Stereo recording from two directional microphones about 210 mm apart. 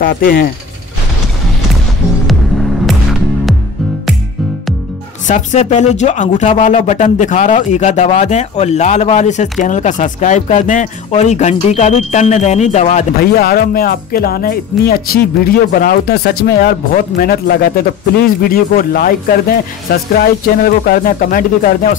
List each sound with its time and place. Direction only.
0.0 s speech: 45° left (ahead or behind)
2.9 s music: centre (ahead or behind)
5.2 s speech: 35° left (ahead or behind)
13.2 s speech: 45° left (ahead or behind)